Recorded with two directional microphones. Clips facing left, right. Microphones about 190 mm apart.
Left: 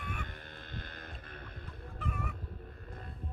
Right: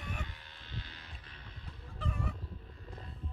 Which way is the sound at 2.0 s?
30° right (ahead or behind).